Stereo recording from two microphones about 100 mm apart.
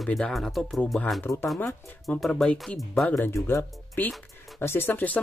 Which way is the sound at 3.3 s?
25° left (ahead or behind).